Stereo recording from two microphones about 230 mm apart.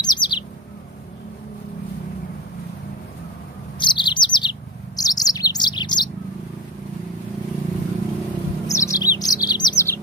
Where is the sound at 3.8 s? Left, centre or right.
Left.